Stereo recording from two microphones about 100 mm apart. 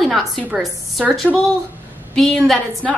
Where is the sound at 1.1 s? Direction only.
10° left (ahead or behind).